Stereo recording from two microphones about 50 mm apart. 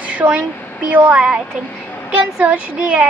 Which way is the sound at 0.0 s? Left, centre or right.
Right.